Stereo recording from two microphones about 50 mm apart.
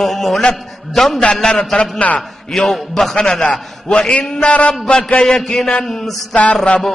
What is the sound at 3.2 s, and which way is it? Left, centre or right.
A man's voice, centre.